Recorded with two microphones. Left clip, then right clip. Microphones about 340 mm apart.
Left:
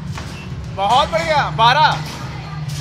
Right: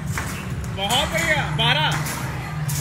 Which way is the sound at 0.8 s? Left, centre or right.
Left.